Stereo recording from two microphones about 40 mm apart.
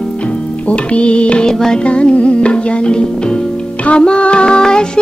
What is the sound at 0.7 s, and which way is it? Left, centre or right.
Music, left.